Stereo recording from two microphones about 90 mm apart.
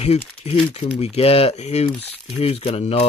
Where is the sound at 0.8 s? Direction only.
90° left.